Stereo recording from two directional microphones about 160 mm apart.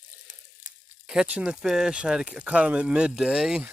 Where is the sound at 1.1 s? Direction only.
5° right (ahead or behind).